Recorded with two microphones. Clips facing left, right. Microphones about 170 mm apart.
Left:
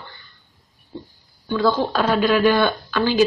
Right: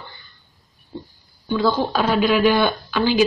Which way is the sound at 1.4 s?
10° right (ahead or behind).